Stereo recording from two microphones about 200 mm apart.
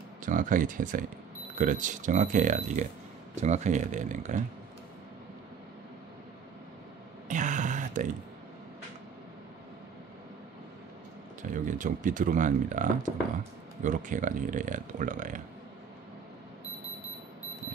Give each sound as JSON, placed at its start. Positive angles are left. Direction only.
{"t": 0.2, "sound": "speech", "side_deg": -40}
{"t": 7.2, "sound": "a sound", "side_deg": -40}
{"t": 11.4, "sound": "speech", "side_deg": -40}